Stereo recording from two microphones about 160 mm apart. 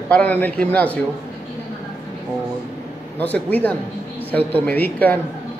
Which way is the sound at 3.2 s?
10° left (ahead or behind).